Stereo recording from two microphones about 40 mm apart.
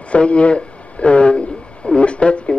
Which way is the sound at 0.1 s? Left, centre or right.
Left.